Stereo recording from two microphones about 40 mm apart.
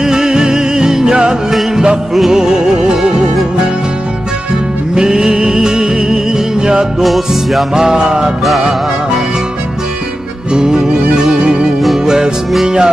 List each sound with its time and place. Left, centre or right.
0.0 s music: centre
4.9 s music: centre
7.0 s music: centre
7.7 s music: centre
10.5 s music: centre